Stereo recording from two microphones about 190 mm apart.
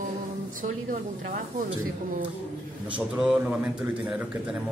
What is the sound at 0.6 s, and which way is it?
Speech, 45° right (ahead or behind).